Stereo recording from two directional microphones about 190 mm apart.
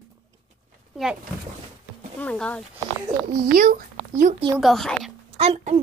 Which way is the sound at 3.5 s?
45° right (ahead or behind).